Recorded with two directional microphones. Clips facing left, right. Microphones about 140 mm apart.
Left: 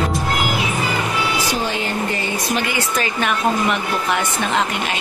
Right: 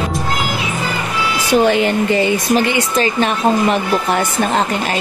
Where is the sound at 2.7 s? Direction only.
30° right (ahead or behind).